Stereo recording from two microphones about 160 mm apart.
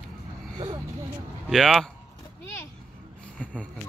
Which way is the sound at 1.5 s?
Centre (ahead or behind).